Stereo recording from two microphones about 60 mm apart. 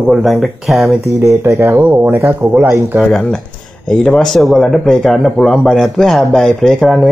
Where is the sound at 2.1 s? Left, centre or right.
Right.